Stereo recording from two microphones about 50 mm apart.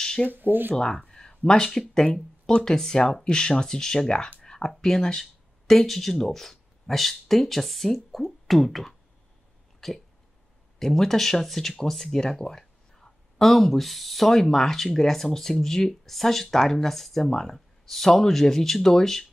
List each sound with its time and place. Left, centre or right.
0.3 s speech: right
0.7 s speech: centre
1.7 s speech: centre
9.8 s hiccup: centre
10.8 s speech: centre